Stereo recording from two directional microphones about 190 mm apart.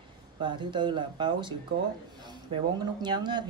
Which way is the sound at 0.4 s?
25° right (ahead or behind).